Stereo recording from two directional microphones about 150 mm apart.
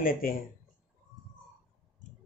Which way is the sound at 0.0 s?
70° left (ahead or behind).